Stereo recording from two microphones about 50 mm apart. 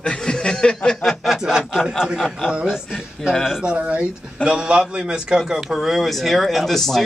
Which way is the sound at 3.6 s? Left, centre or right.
Right.